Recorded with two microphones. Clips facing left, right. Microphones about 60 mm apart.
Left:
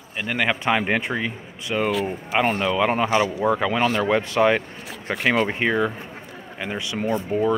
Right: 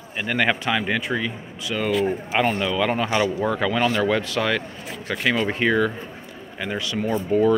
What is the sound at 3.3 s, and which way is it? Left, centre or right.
Speech, centre.